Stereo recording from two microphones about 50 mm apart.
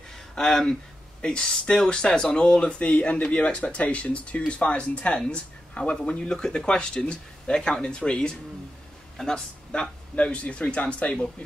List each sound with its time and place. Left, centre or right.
0.4 s speech: centre